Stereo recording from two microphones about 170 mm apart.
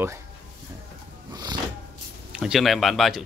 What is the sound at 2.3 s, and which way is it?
Speech, 5° right (ahead or behind).